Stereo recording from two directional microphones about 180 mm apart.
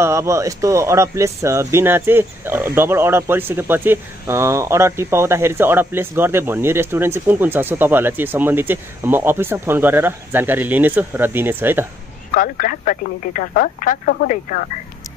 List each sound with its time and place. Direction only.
0.0 s speech: 15° right (ahead or behind)
12.4 s speech: 50° left (ahead or behind)